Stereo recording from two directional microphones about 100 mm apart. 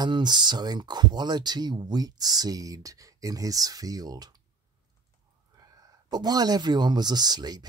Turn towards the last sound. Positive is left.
turn(degrees=-40)  # may be behind; listen again after turning